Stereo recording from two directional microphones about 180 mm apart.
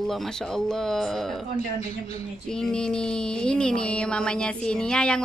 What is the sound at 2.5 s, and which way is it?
Speech, 5° left (ahead or behind).